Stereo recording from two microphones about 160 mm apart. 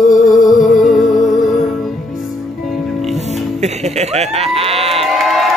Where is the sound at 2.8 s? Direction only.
Centre (ahead or behind).